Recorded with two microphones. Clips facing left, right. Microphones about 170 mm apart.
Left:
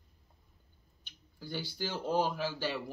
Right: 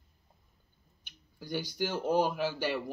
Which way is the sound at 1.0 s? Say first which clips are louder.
Even; 15° right (ahead or behind).